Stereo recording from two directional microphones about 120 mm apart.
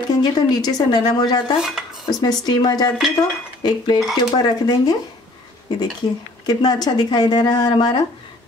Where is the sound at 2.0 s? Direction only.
35° left (ahead or behind).